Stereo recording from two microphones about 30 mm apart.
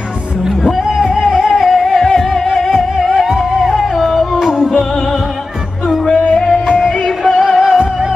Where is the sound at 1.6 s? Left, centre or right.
Centre.